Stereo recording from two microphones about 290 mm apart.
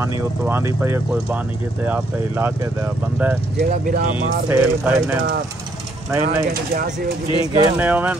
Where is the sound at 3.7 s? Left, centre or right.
Right.